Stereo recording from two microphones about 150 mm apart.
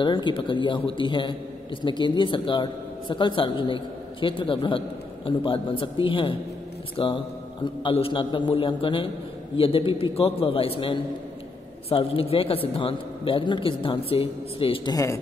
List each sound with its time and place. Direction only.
0.0 s a man's voice: 30° left (ahead or behind)